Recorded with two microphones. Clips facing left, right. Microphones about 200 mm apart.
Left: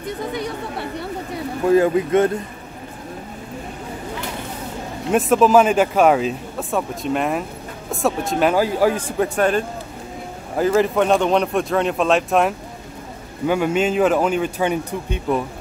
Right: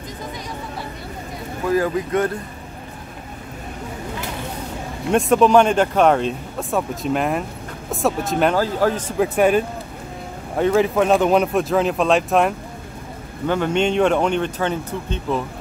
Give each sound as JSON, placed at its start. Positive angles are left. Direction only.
{"t": 0.0, "sound": "chatter", "side_deg": 65}
{"t": 1.7, "sound": "speech", "side_deg": 25}
{"t": 5.1, "sound": "speech", "side_deg": 5}
{"t": 8.5, "sound": "speech", "side_deg": 10}
{"t": 9.2, "sound": "speech", "side_deg": -5}